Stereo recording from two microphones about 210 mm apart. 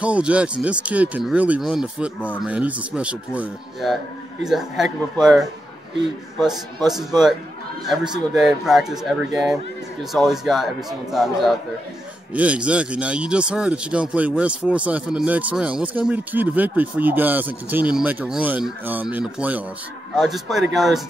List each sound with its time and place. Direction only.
0.0 s speech: 5° right (ahead or behind)
6.9 s speech: centre (ahead or behind)